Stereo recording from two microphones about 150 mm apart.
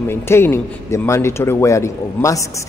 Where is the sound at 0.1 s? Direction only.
15° left (ahead or behind).